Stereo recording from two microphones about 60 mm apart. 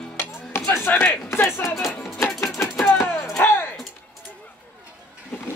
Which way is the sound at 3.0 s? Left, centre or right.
Centre.